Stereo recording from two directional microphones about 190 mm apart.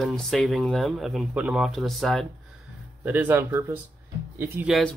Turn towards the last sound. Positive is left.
turn(degrees=-10)  # may be behind; listen again after turning